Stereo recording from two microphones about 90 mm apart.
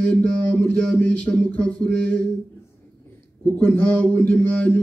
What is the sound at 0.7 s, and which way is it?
Mantra, 15° left (ahead or behind).